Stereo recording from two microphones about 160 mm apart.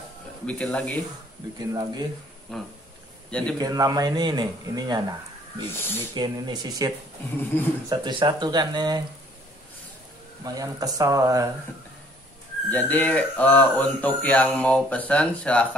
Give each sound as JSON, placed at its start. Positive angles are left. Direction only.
{"t": 0.5, "sound": "speech", "side_deg": 5}
{"t": 1.6, "sound": "speech", "side_deg": -25}
{"t": 2.5, "sound": "a man's voice", "side_deg": 5}
{"t": 3.5, "sound": "speech", "side_deg": -25}
{"t": 5.7, "sound": "speech", "side_deg": 15}
{"t": 6.1, "sound": "speech", "side_deg": -25}
{"t": 7.9, "sound": "speech", "side_deg": -30}
{"t": 10.4, "sound": "speech", "side_deg": -20}
{"t": 12.6, "sound": "speech", "side_deg": 10}